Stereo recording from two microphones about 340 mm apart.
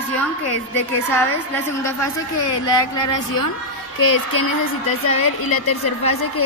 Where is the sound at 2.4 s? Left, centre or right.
Left.